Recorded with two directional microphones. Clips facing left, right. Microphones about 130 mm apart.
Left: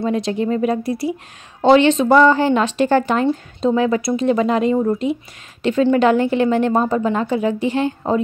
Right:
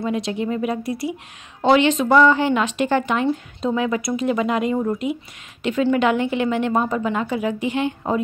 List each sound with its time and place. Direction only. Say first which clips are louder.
0.0 s speech: left 4 dB; 35° left (ahead or behind)